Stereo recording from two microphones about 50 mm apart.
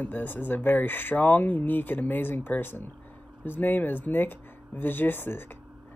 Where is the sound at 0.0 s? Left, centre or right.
Left.